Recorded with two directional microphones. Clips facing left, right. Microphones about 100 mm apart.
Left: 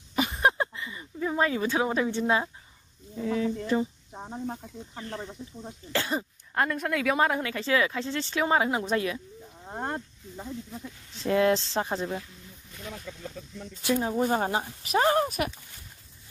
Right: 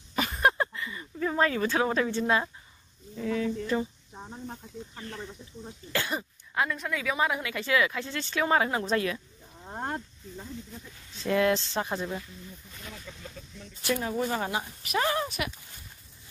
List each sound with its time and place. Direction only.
0.4 s speech: 20° left (ahead or behind)
6.5 s speech: 50° left (ahead or behind); by 12.1 s 25° left (ahead or behind)
13.8 s speech: 20° left (ahead or behind)
14.2 s speech: 45° left (ahead or behind)
14.6 s speech: 30° left (ahead or behind)